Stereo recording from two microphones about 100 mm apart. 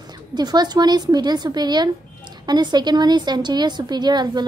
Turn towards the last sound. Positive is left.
turn(degrees=-45)  # may be behind; listen again after turning